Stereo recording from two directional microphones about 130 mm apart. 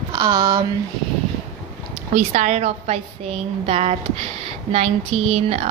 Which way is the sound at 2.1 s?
60° right (ahead or behind).